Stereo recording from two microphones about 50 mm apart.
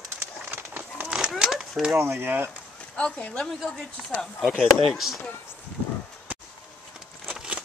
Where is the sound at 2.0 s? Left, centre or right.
Right.